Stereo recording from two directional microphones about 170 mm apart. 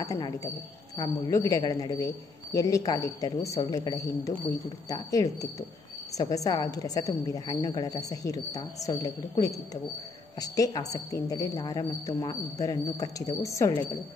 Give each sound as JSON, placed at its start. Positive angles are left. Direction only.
{"t": 0.0, "sound": "a woman's voice", "side_deg": 20}